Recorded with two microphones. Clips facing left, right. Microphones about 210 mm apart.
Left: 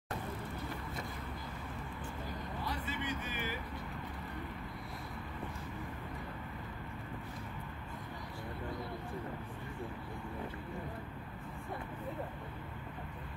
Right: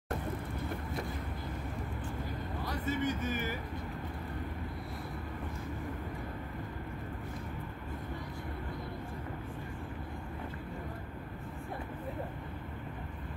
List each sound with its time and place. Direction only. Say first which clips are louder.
2.6 s speech: right 8 dB; 45° right (ahead or behind)